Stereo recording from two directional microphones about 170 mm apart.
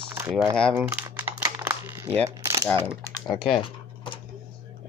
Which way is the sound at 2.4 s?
20° right (ahead or behind).